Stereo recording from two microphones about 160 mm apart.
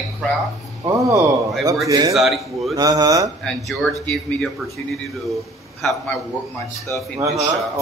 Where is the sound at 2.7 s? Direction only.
20° right (ahead or behind).